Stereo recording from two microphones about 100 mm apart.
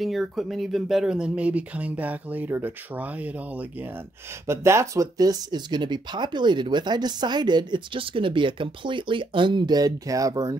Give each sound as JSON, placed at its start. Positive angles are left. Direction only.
{"t": 0.0, "sound": "speech", "side_deg": 0}
{"t": 4.5, "sound": "speech", "side_deg": -25}